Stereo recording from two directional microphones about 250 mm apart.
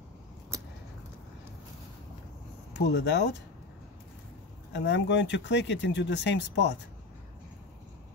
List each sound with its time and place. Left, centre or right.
0.5 s a sound: centre
2.7 s speech: left
4.7 s speech: left